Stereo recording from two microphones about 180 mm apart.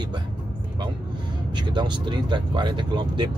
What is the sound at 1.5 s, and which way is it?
Speech, 25° right (ahead or behind).